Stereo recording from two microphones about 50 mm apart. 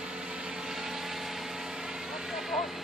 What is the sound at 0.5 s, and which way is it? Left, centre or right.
Vehicle, centre.